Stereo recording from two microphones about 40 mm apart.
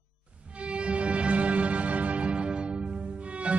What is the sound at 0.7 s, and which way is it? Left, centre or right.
Music, right.